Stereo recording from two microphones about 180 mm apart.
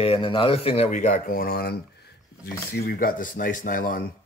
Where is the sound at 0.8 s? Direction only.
45° left (ahead or behind).